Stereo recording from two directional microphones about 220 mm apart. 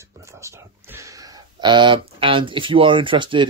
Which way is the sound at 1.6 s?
20° right (ahead or behind).